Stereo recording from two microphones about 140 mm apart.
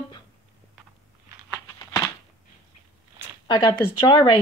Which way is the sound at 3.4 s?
30° left (ahead or behind).